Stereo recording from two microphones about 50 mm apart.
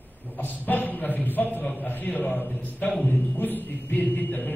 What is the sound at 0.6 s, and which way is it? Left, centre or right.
A man's voice, left.